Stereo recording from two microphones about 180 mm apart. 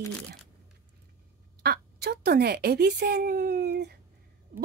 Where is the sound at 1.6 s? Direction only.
60° right (ahead or behind).